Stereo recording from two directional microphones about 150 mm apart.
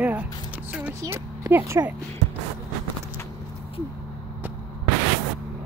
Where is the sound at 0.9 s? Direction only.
20° right (ahead or behind).